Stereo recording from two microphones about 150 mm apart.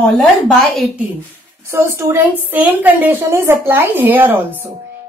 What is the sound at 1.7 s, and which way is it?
A woman's voice, 20° right (ahead or behind).